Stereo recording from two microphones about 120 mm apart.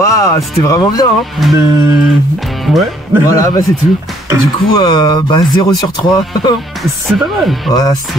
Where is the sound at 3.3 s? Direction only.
30° left (ahead or behind).